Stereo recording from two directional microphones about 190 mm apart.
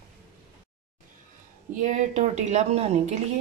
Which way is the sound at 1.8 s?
40° right (ahead or behind).